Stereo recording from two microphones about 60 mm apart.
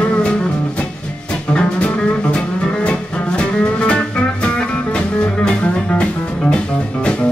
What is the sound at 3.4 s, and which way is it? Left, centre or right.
Music, centre.